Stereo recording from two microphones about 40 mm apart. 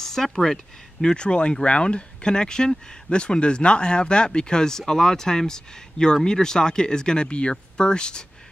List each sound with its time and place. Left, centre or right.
0.0 s speech: centre
1.0 s speech: left